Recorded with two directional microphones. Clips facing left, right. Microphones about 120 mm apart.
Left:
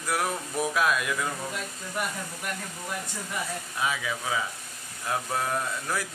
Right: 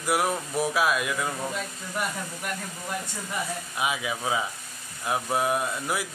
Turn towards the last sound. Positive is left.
turn(degrees=-10)  # may be behind; listen again after turning